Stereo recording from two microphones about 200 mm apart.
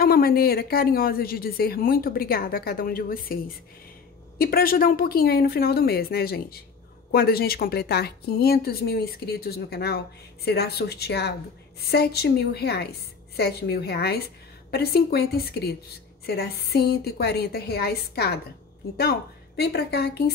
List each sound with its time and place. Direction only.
0.0 s a woman's voice: 50° left (ahead or behind)